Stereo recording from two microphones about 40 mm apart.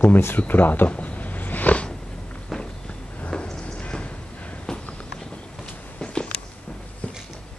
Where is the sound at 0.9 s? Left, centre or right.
Left.